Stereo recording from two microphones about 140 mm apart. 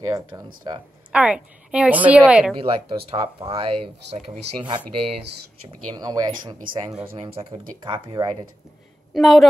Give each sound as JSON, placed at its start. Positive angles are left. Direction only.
{"t": 0.0, "sound": "speech", "side_deg": -25}
{"t": 1.1, "sound": "a woman's voice", "side_deg": -5}
{"t": 2.6, "sound": "speech", "side_deg": -40}
{"t": 5.9, "sound": "speech", "side_deg": -30}
{"t": 7.2, "sound": "speech", "side_deg": -40}
{"t": 9.1, "sound": "a woman's voice", "side_deg": 0}